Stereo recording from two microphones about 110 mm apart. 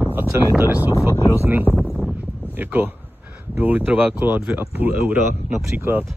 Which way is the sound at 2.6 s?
15° right (ahead or behind).